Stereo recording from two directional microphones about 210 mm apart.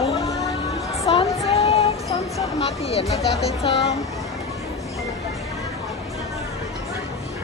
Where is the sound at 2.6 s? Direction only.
30° left (ahead or behind).